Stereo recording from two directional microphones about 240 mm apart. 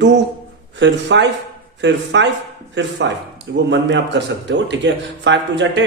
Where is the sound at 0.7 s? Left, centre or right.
Right.